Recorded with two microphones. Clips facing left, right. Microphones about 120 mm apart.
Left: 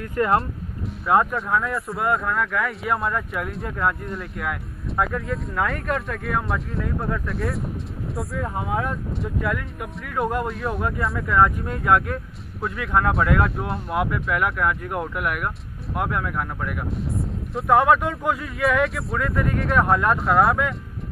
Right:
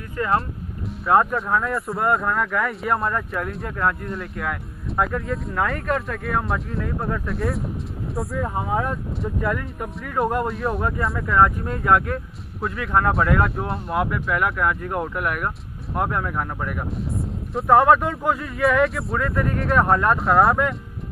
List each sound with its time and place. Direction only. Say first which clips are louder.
0.2 s speech: left 4 dB; 45° left (ahead or behind)
1.0 s speech: right 1 dB; centre (ahead or behind)
14.9 s speech: right 1 dB; 20° right (ahead or behind)
15.2 s speech: right 1 dB; 5° left (ahead or behind)
16.1 s speech: right 1 dB; 10° right (ahead or behind)
16.6 s speech: even; centre (ahead or behind)